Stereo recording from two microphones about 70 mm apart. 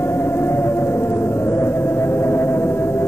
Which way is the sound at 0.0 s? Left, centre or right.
Left.